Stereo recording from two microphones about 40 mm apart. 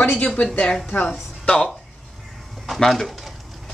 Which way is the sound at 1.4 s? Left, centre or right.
Left.